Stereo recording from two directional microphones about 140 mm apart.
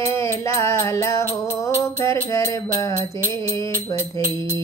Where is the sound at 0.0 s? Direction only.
20° left (ahead or behind).